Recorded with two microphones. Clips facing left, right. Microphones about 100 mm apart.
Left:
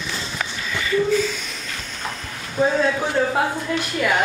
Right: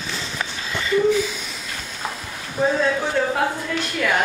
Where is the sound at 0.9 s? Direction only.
15° right (ahead or behind).